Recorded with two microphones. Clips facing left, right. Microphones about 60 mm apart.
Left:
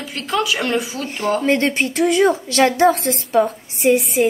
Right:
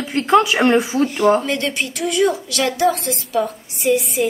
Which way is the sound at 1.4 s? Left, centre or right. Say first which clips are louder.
Left 5 dB; left.